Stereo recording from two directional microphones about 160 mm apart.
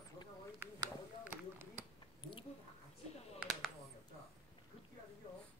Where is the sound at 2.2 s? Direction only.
30° left (ahead or behind).